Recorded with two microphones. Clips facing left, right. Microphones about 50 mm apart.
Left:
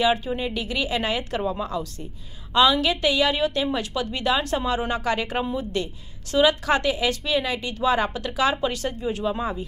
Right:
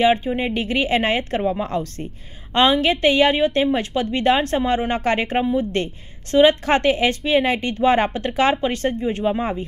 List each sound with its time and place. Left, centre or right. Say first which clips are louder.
0.0 s speech: right 5 dB; right
1.7 s speech: right 5 dB; right